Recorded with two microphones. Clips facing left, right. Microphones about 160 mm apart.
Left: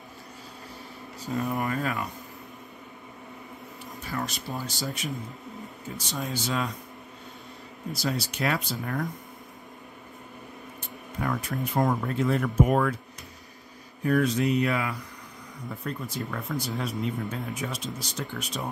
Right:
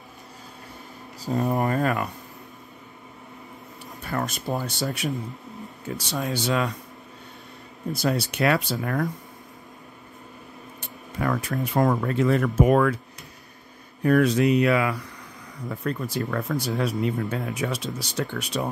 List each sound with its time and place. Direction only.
1.2 s speech: 35° right (ahead or behind)
4.0 s speech: 60° right (ahead or behind)
7.9 s speech: 60° right (ahead or behind)
10.8 s speech: 80° right
14.0 s speech: 65° right (ahead or behind)